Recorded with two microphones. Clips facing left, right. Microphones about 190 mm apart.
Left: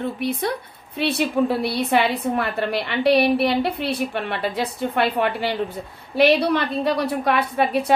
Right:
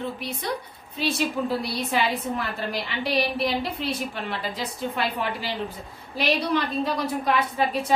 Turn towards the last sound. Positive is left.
turn(degrees=65)  # may be behind; listen again after turning